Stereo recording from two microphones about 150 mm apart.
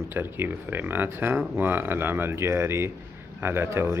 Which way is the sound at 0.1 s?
15° right (ahead or behind).